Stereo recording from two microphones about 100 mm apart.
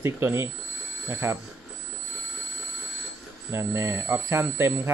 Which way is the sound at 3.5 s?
25° right (ahead or behind).